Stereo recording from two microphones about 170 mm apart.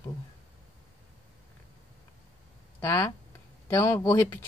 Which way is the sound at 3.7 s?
15° left (ahead or behind).